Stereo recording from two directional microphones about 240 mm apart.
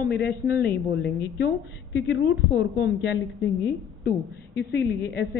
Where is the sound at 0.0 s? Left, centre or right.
Left.